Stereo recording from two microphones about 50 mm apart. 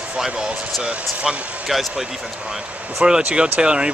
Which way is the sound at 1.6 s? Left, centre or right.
Centre.